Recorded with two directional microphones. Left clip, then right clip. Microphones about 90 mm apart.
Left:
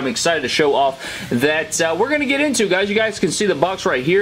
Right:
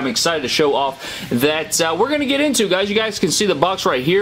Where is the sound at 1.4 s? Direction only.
25° right (ahead or behind).